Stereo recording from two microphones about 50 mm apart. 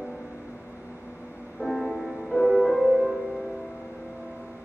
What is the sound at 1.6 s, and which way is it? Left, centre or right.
Music, centre.